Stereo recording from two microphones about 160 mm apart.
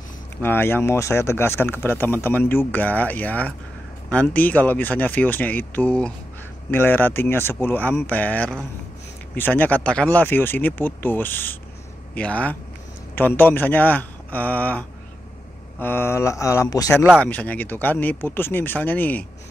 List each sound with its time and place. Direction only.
0.4 s speech: 15° left (ahead or behind)